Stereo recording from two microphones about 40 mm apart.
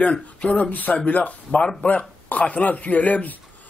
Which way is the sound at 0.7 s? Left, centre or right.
Left.